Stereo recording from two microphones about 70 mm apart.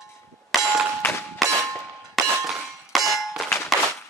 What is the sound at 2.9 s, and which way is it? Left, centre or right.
Clang, centre.